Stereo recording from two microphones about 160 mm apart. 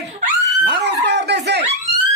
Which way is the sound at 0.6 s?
90° right.